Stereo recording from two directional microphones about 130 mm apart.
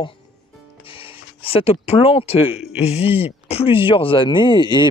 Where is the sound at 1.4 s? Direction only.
50° left (ahead or behind).